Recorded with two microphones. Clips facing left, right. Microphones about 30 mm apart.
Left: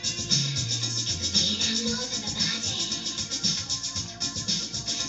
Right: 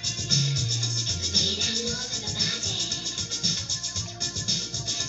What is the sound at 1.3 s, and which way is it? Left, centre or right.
Music, centre.